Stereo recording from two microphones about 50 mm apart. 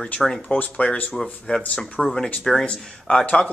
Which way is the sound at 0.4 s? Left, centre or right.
Left.